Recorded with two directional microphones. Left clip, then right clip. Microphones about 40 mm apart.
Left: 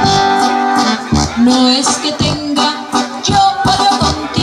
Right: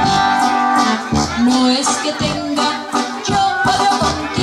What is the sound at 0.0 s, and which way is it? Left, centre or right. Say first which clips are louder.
Music: left 3 dB; left.